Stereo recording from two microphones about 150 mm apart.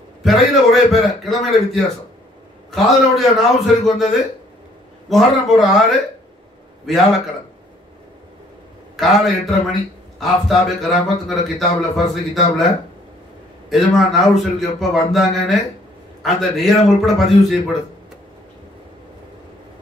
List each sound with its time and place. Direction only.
0.2 s a man's voice: centre (ahead or behind)
8.9 s a man's voice: centre (ahead or behind)
13.7 s a man's voice: centre (ahead or behind)